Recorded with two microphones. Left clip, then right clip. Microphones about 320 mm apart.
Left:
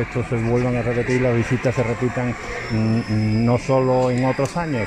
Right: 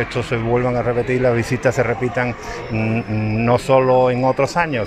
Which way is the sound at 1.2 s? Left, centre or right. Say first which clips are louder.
Right 4 dB; right.